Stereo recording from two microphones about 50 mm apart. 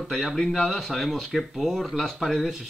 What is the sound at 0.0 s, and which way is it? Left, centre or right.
Speech, centre.